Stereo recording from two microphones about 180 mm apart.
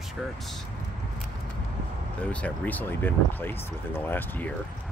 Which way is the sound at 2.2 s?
5° left (ahead or behind).